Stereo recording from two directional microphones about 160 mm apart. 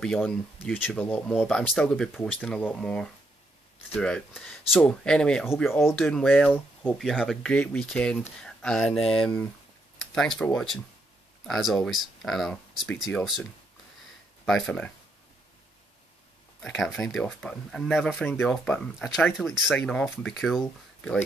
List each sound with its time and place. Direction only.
0.0 s speech: 5° left (ahead or behind)
5.7 s speech: 15° left (ahead or behind)
5.9 s speech: centre (ahead or behind)
16.6 s speech: 5° left (ahead or behind)